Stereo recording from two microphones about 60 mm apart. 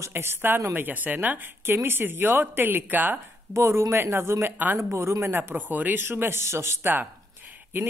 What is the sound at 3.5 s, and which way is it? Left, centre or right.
Speech, right.